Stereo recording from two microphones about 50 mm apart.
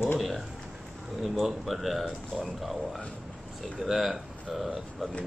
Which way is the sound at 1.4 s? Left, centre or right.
Centre.